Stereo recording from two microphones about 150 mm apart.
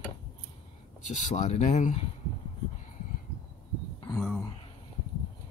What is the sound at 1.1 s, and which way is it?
Speech, 55° left (ahead or behind).